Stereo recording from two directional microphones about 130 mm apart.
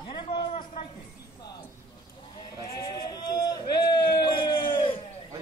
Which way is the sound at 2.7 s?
30° left (ahead or behind).